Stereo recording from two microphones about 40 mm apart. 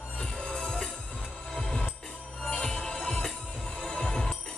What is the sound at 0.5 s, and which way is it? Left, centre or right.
Music, centre.